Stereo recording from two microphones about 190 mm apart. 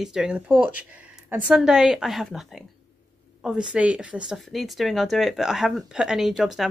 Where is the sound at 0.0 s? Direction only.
5° right (ahead or behind).